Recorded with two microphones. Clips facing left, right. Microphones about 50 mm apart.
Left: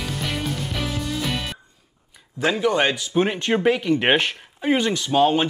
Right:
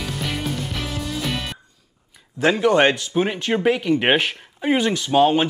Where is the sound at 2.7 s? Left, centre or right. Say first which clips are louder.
Right 5 dB; right.